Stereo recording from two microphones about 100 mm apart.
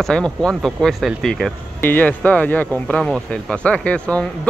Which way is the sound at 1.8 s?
20° left (ahead or behind).